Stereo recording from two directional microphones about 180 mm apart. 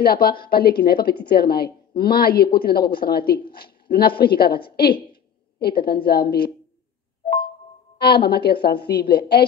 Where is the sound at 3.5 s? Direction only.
60° left (ahead or behind).